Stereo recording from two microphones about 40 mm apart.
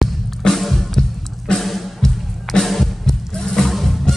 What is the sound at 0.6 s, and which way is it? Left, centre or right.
Music, centre.